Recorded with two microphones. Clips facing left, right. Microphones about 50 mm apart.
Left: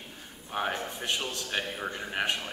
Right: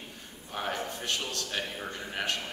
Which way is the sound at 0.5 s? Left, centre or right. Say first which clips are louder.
Left 2 dB; centre.